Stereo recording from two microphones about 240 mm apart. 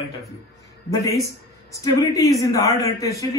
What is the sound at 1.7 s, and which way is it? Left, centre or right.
A woman's voice, centre.